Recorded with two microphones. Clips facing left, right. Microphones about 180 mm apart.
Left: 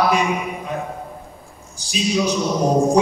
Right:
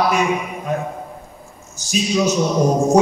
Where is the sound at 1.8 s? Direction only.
45° right (ahead or behind).